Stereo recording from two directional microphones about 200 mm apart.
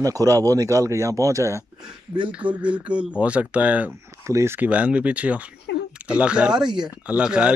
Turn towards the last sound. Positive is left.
turn(degrees=-5)  # may be behind; listen again after turning